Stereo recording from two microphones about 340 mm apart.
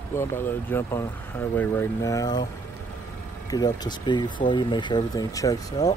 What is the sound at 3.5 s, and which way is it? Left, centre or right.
Speech, centre.